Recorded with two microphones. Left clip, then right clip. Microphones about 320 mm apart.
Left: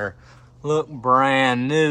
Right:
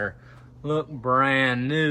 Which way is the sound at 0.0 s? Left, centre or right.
Centre.